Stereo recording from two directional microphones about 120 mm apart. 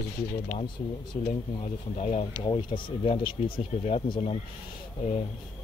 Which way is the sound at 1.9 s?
60° left (ahead or behind).